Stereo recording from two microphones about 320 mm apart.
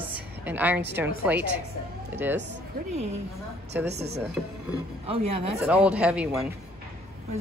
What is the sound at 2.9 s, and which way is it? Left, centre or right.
Speech, centre.